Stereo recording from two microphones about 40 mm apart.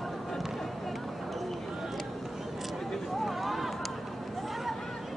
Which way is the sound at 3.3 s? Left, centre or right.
Centre.